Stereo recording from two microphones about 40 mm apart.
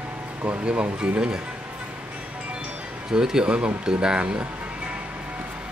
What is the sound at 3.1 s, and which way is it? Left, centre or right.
Speech, centre.